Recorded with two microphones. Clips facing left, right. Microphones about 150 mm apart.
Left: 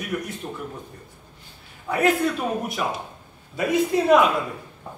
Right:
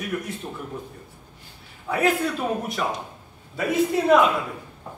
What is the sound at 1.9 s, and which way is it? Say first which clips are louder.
Speech: left 1 dB; centre (ahead or behind).